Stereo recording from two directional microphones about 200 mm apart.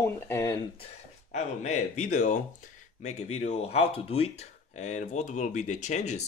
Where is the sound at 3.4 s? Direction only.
30° left (ahead or behind).